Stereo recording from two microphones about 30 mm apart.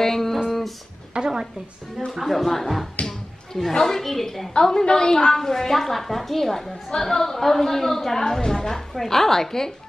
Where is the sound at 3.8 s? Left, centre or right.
Centre.